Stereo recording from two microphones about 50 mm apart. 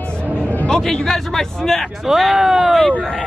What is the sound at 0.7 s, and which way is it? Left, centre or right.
A man's voice, centre.